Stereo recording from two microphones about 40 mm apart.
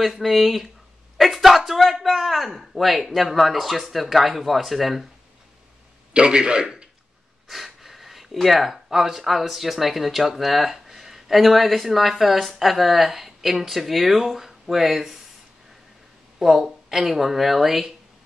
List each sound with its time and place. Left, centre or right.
0.0 s speech: centre
6.1 s a man's voice: right
7.4 s speech: centre
16.3 s speech: centre